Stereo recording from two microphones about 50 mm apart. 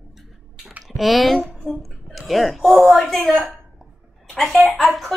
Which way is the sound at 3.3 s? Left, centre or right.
Centre.